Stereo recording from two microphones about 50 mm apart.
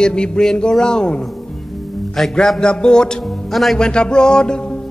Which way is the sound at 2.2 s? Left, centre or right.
Centre.